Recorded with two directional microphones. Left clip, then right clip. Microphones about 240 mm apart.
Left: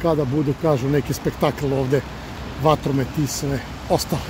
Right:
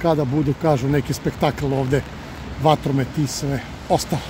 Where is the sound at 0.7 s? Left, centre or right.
Centre.